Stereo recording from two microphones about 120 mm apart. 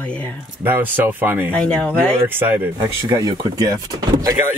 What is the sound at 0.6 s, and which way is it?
Speech, 15° right (ahead or behind).